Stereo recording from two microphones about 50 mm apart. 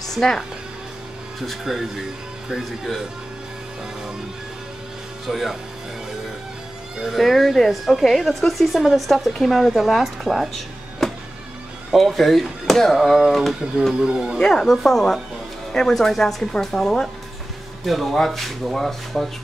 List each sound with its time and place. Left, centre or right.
0.0 s music: centre
1.4 s a woman's voice: centre
5.3 s a woman's voice: centre
7.0 s a woman's voice: centre
11.0 s music: centre
11.9 s a woman's voice: centre
13.9 s speech: centre
14.4 s a woman's voice: centre